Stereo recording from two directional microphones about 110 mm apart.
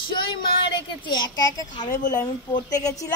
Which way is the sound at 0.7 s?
45° left (ahead or behind).